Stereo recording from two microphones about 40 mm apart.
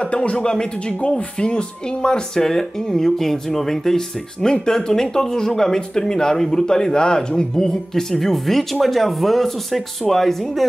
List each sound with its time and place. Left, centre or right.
0.0 s speech: left; by 10.6 s centre